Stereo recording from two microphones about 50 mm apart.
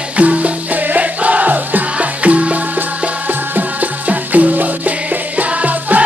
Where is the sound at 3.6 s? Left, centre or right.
Right.